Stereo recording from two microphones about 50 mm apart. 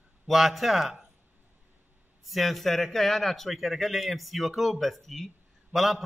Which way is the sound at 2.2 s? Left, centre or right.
Centre.